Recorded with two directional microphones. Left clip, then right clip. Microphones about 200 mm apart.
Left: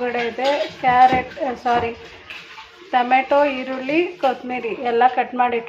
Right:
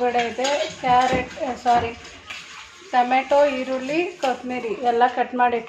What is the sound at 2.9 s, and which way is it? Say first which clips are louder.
Speech: left 2 dB; 15° left (ahead or behind).